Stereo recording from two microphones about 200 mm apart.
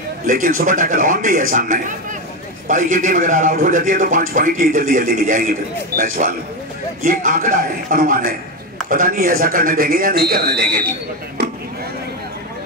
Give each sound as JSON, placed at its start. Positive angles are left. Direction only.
{"t": 0.3, "sound": "a man's voice", "side_deg": -45}